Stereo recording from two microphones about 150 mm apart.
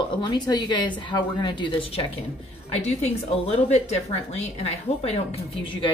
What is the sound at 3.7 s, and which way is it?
A woman's voice, 45° left (ahead or behind).